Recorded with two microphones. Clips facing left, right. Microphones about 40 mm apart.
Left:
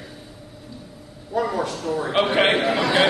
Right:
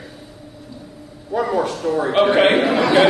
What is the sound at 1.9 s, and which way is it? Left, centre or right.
Speech, right.